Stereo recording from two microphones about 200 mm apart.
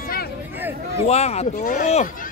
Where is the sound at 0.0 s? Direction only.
50° left (ahead or behind).